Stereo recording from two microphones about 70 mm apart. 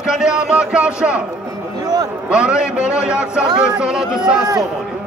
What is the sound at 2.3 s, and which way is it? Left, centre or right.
Speech, centre.